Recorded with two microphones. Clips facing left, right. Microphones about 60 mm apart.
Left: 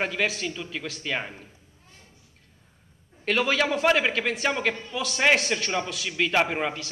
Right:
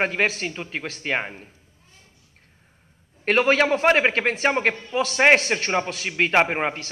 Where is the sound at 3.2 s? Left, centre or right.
Right.